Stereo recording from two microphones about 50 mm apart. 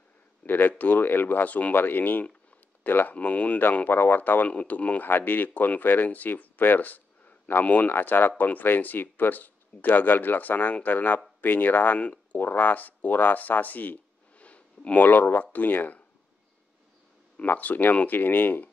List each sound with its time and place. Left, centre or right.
0.4 s speech: left
5.0 s speech: left
12.0 s speech: left
12.4 s speech: left
14.4 s a sound: left
15.0 s speech: left
17.5 s speech: left